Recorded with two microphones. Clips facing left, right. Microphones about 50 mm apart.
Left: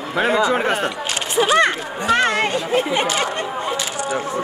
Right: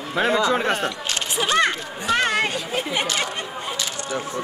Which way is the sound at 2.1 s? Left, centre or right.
Left.